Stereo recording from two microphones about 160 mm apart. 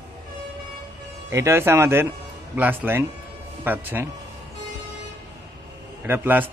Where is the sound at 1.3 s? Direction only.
15° right (ahead or behind).